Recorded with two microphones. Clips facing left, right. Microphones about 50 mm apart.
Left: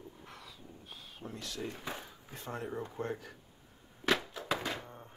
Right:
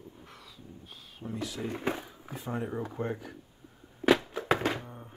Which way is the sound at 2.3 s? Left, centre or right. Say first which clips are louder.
Right 5 dB; centre.